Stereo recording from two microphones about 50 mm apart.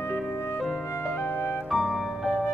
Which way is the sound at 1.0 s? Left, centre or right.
Left.